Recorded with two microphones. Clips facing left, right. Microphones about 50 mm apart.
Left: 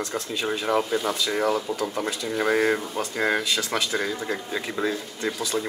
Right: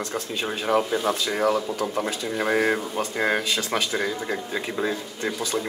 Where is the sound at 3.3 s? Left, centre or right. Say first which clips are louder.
Even; right.